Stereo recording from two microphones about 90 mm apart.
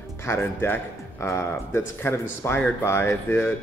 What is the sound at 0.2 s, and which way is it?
Speech, 30° left (ahead or behind).